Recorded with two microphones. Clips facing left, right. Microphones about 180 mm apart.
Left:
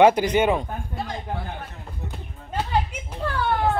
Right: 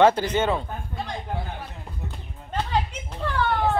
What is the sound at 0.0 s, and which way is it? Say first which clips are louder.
Speech: left 2 dB; 15° left (ahead or behind).